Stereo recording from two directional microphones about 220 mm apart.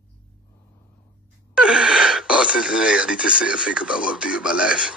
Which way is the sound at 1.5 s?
5° right (ahead or behind).